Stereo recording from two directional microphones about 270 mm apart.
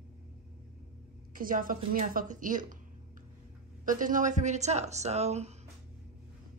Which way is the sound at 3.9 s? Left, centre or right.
Right.